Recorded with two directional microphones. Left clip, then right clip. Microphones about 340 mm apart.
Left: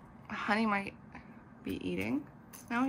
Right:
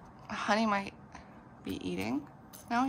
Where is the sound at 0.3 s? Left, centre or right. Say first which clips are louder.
Right 2 dB; centre.